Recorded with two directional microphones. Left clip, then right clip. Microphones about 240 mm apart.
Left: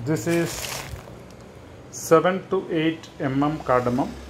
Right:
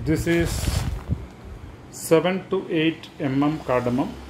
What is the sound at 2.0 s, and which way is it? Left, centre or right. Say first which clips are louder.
Speech: left 2 dB; centre.